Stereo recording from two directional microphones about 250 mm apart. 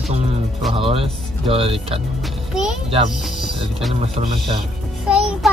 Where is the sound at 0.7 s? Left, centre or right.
Right.